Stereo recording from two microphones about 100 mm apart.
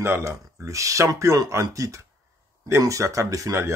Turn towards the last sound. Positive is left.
turn(degrees=-30)  # may be behind; listen again after turning